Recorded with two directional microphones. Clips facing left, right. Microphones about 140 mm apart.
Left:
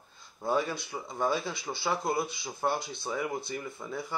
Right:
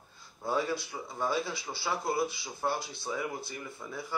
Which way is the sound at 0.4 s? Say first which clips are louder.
Left 1 dB; 15° left (ahead or behind).